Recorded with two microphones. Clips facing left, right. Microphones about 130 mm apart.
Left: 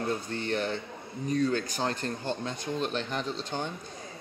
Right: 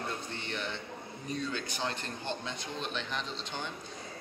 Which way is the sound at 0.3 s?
40° left (ahead or behind).